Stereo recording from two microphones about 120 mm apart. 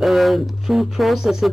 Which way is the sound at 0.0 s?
Centre (ahead or behind).